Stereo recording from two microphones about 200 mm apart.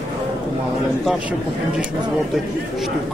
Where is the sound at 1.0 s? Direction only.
Centre (ahead or behind).